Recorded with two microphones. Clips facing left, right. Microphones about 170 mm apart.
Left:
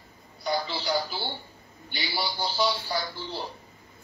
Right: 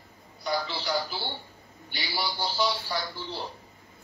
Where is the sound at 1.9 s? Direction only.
25° left (ahead or behind).